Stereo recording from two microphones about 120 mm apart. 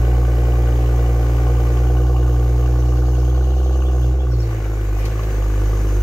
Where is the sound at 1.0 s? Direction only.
30° left (ahead or behind).